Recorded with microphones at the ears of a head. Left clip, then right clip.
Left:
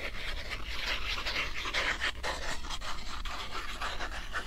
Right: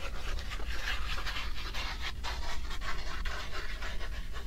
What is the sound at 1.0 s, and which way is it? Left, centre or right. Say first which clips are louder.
Pant: left 5 dB; left.